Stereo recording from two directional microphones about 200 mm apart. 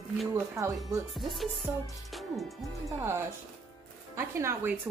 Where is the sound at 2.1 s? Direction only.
Centre (ahead or behind).